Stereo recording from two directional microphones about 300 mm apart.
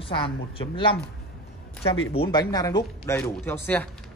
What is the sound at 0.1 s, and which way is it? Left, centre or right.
Speech, centre.